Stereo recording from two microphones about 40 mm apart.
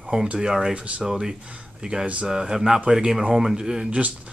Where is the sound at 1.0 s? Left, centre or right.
Centre.